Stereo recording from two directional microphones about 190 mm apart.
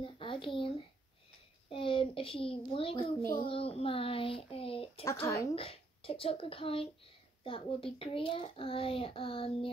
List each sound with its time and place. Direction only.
0.0 s a sound: 25° left (ahead or behind)
1.7 s speech: 25° left (ahead or behind)
5.2 s speech: 15° left (ahead or behind)
5.5 s speech: 30° left (ahead or behind)